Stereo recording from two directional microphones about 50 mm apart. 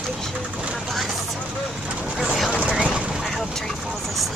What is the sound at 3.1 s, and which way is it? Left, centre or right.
Vehicle, centre.